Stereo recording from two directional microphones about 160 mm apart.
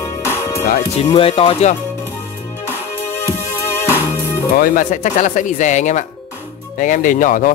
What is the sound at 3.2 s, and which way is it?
Music, 15° left (ahead or behind).